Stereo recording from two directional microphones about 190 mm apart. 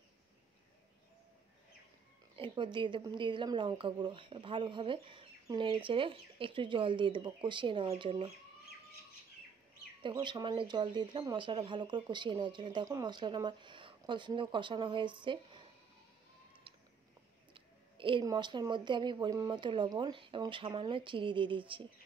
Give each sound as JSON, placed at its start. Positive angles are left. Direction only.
{"t": 2.3, "sound": "a woman's voice", "side_deg": -25}
{"t": 10.0, "sound": "a woman's voice", "side_deg": -25}
{"t": 17.6, "sound": "a woman's voice", "side_deg": -25}